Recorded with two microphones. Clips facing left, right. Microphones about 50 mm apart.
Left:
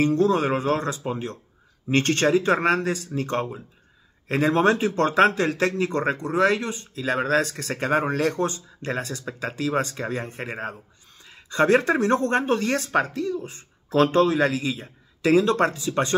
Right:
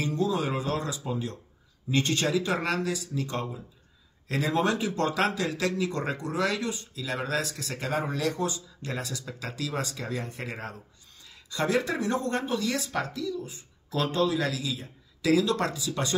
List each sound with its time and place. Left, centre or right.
0.0 s speech: left
1.9 s a man's voice: left